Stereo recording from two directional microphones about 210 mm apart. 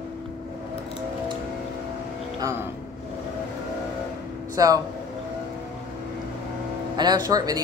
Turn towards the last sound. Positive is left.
turn(degrees=-20)  # may be behind; listen again after turning